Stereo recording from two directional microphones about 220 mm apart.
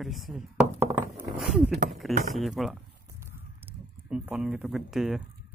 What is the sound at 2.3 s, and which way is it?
Speech, centre (ahead or behind).